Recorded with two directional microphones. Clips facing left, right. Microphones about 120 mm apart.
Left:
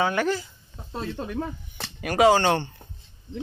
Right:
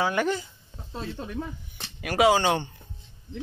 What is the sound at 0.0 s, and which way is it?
Speech, 10° right (ahead or behind).